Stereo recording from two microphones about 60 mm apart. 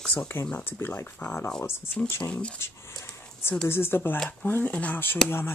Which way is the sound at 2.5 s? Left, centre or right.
Left.